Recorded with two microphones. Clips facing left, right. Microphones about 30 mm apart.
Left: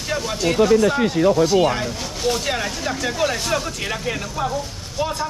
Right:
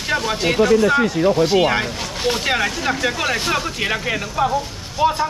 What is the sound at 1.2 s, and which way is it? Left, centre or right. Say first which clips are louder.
Speech: left 2 dB; right.